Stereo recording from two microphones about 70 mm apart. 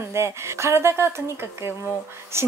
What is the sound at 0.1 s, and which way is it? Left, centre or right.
A woman's voice, right.